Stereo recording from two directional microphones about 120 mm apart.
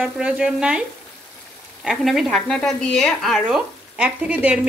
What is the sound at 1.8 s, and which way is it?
Speech, centre (ahead or behind).